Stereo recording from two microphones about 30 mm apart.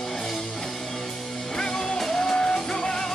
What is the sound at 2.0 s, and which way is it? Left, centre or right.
Music, centre.